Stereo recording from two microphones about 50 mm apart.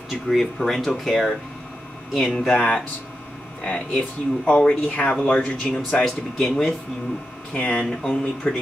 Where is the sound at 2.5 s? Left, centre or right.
Left.